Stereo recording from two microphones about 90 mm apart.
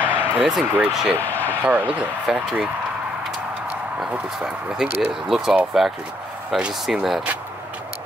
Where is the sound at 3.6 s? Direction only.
15° right (ahead or behind).